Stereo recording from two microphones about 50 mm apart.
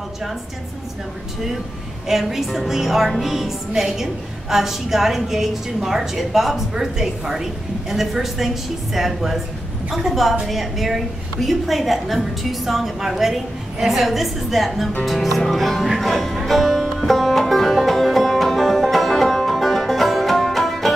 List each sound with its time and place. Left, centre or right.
2.0 s a woman's voice: centre
16.4 s music: centre